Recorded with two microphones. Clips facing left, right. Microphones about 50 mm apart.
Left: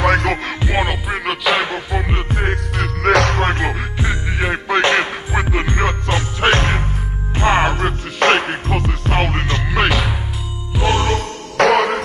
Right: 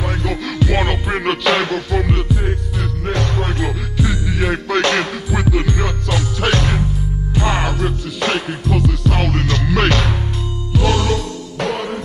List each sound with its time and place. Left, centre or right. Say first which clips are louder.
0.0 s music: left 8 dB; left
0.6 s music: right 1 dB; left
0.8 s music: right 2 dB; centre
1.7 s music: right 3 dB; centre
2.2 s music: left 1 dB; left
3.0 s music: left 9 dB; left
3.3 s music: left 3 dB; left
3.9 s music: right 1 dB; left; by 10.1 s centre
10.7 s music: even; left
11.5 s music: left 9 dB; left